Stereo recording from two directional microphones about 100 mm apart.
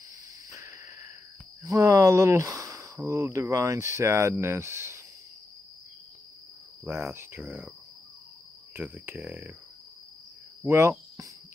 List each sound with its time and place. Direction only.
0.5 s cricket: 30° right (ahead or behind)
1.6 s speech: 30° right (ahead or behind)
6.8 s speech: 25° right (ahead or behind)
8.7 s speech: 20° right (ahead or behind)
10.6 s cricket: 25° right (ahead or behind)